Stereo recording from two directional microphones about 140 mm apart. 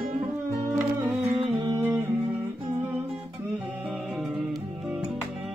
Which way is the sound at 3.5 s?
5° right (ahead or behind).